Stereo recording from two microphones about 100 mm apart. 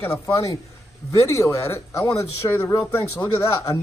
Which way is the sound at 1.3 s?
30° left (ahead or behind).